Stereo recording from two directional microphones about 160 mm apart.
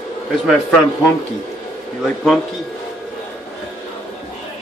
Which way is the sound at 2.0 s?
Centre (ahead or behind).